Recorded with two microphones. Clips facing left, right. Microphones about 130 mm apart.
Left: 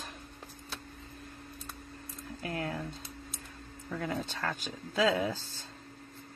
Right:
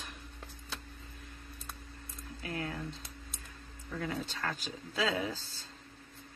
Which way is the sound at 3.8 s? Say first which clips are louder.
Left 2 dB; 40° left (ahead or behind).